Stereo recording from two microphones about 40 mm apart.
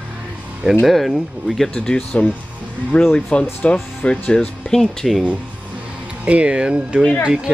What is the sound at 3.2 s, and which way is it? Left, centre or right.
Speech, left.